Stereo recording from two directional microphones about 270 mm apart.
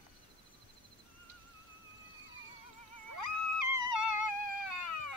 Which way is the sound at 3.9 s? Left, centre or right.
Left.